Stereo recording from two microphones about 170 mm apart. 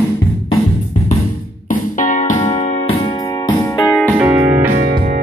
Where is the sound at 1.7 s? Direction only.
50° left (ahead or behind).